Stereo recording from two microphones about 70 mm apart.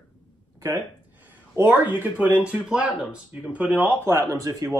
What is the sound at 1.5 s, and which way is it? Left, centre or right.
Speech, right.